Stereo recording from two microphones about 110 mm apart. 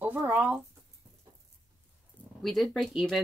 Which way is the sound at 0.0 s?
20° right (ahead or behind).